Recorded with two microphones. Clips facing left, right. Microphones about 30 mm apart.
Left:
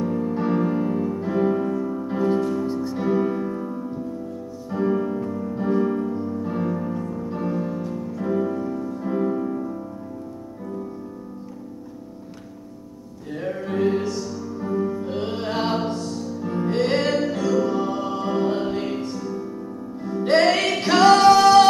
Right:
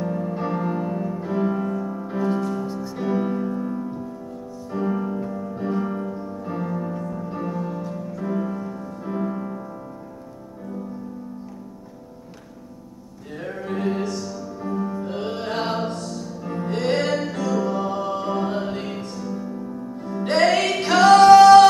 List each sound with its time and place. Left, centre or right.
0.0 s music: centre
2.6 s music: left
3.1 s music: centre
4.6 s music: centre
13.3 s music: centre
17.0 s music: left
17.3 s music: centre
20.5 s music: centre
21.3 s music: centre